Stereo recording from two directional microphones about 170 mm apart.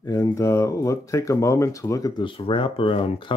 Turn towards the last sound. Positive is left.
turn(degrees=30)  # may be behind; listen again after turning